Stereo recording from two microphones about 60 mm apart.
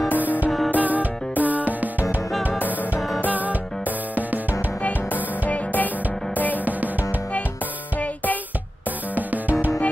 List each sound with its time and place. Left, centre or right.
0.2 s music: right
3.3 s music: right
5.5 s music: left
9.1 s music: right